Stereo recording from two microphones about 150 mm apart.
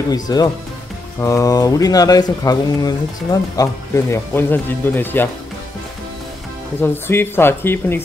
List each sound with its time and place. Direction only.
0.1 s speech: 25° left (ahead or behind)
6.8 s speech: 15° left (ahead or behind)